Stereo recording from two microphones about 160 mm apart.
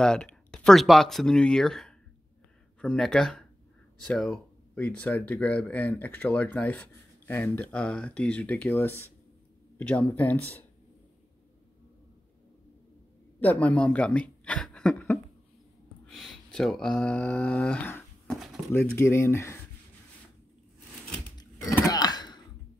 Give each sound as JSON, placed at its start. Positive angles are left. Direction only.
{"t": 0.0, "sound": "speech", "side_deg": 5}
{"t": 13.4, "sound": "speech", "side_deg": 10}
{"t": 16.1, "sound": "speech", "side_deg": 5}
{"t": 21.4, "sound": "a sound", "side_deg": 20}